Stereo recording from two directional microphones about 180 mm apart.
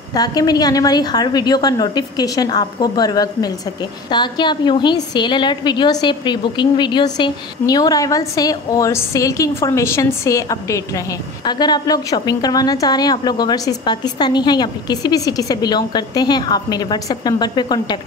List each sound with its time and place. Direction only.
0.1 s a woman's voice: 20° left (ahead or behind)